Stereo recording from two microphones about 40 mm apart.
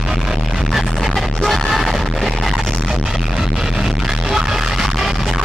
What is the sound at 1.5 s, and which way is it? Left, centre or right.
Music, centre.